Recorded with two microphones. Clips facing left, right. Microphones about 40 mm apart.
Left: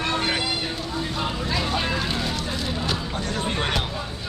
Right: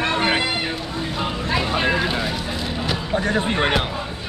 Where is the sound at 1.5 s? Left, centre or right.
Right.